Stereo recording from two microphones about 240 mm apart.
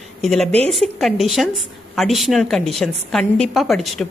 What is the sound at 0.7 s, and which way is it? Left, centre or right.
A woman's voice, centre.